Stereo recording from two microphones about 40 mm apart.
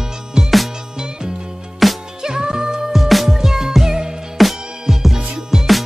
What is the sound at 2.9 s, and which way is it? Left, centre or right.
Music, centre.